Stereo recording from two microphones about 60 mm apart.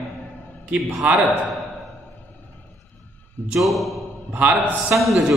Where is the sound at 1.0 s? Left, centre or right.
Right.